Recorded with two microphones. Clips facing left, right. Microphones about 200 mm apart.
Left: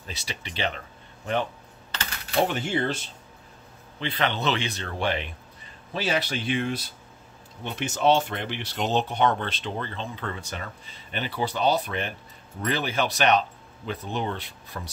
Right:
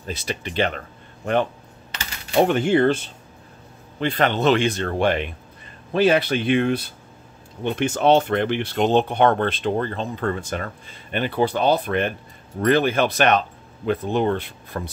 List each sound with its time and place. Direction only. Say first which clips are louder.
0.0 s speech: right 9 dB; 50° right (ahead or behind)
2.4 s speech: right 11 dB; 60° right (ahead or behind)
4.0 s speech: right 7 dB; 45° right (ahead or behind)